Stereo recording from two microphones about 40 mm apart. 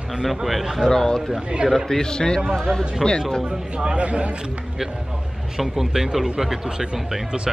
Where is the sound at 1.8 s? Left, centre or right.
Centre.